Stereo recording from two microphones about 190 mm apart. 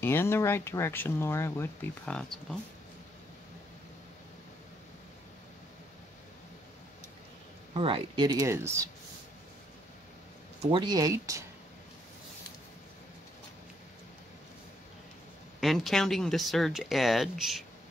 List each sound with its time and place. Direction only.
0.0 s speech: 10° left (ahead or behind)
7.7 s speech: 25° right (ahead or behind)
10.7 s speech: 25° right (ahead or behind)
15.6 s speech: centre (ahead or behind)